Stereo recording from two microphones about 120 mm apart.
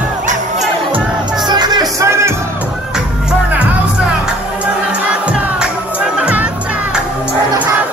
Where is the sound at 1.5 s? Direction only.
35° right (ahead or behind).